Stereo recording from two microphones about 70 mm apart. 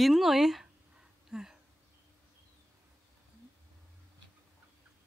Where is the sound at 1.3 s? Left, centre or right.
Centre.